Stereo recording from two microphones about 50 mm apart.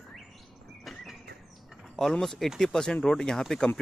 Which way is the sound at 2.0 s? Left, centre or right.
Centre.